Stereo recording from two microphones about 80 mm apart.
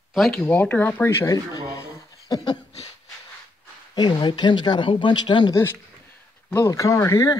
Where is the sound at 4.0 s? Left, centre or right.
Left.